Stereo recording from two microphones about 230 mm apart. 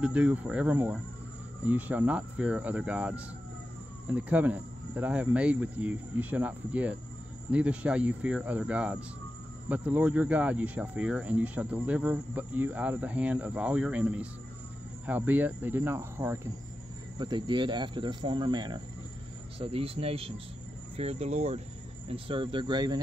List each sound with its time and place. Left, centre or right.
0.0 s speech: centre